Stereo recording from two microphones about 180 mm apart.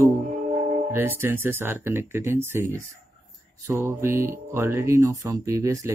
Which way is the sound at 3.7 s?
15° right (ahead or behind).